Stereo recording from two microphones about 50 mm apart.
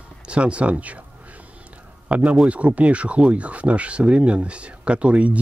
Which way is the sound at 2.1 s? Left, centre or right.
Right.